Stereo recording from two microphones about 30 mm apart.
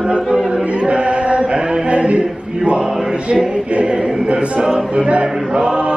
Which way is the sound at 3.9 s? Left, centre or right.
Right.